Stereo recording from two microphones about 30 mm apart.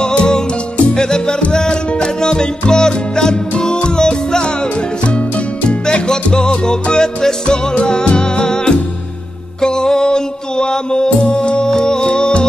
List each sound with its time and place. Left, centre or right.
0.0 s music: left
0.9 s music: left
5.7 s salsa music: left
6.5 s music: left